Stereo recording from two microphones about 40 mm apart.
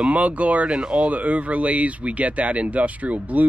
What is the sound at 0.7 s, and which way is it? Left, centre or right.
Speech, right.